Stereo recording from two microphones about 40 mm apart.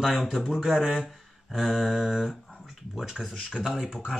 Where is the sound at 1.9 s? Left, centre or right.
Centre.